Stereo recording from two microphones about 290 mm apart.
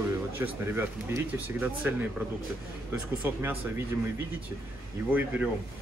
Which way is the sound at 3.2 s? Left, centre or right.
Centre.